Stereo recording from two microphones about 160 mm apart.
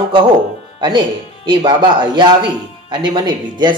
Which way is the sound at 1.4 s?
30° right (ahead or behind).